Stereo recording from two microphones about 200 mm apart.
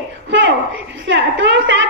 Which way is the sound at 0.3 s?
65° right (ahead or behind).